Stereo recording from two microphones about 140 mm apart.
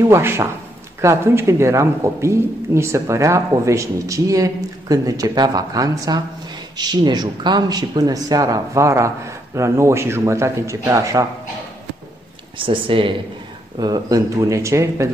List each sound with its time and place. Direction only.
0.0 s a man's voice: 20° right (ahead or behind)
12.5 s speech: 40° right (ahead or behind)
13.7 s a man's voice: 30° right (ahead or behind)